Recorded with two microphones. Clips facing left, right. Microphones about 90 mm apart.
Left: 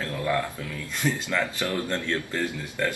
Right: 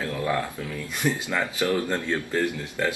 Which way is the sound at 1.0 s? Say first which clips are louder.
Right 1 dB; 15° right (ahead or behind).